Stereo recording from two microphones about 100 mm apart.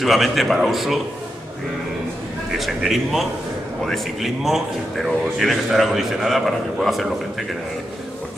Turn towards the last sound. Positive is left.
turn(degrees=0)  # may be behind; listen again after turning